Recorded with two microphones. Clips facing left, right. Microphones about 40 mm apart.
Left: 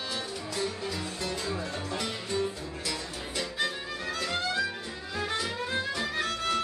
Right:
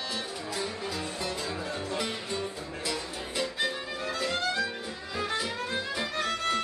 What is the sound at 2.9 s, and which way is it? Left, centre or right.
Music, centre.